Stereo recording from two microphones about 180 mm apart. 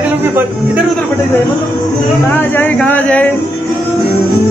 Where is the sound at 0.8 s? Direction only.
5° left (ahead or behind).